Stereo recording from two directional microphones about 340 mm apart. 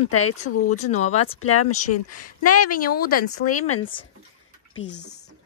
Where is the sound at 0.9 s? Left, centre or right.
Centre.